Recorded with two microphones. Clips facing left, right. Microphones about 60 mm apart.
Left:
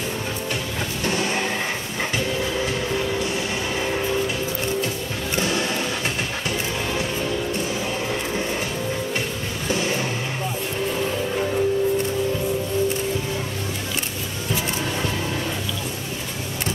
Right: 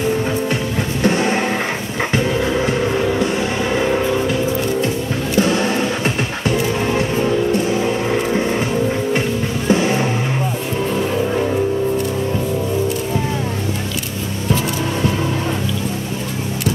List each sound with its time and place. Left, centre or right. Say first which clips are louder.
1.0 s music: right 7 dB; right
5.4 s a sound: right 7 dB; right
9.7 s vehicle: right 8 dB; right